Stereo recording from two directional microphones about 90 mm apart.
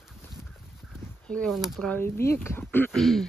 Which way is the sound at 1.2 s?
10° left (ahead or behind).